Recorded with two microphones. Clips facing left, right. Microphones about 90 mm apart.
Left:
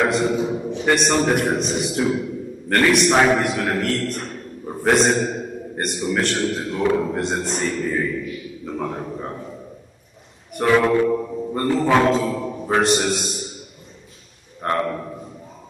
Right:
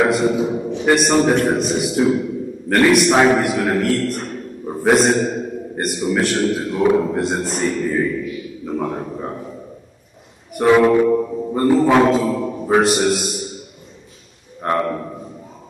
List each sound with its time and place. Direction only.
0.0 s a man's voice: 5° right (ahead or behind)
8.6 s a sound: 5° right (ahead or behind)
10.6 s a man's voice: 10° right (ahead or behind)
14.6 s a man's voice: 5° right (ahead or behind)